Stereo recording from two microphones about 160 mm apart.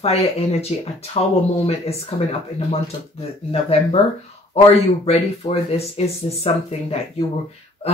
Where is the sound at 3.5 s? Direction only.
40° left (ahead or behind).